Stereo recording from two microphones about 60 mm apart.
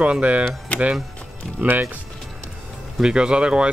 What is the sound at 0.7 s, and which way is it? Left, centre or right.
Music, left.